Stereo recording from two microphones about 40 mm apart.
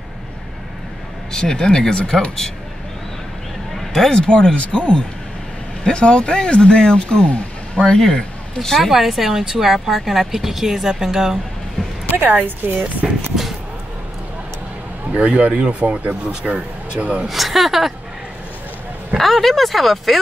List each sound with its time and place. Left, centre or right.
1.3 s speech: centre
3.7 s a sound: centre
4.1 s speech: left
8.9 s a woman's voice: centre
12.1 s a woman's voice: right
13.0 s a sound: centre
15.1 s speech: right
17.3 s a woman's voice: centre
19.1 s speech: centre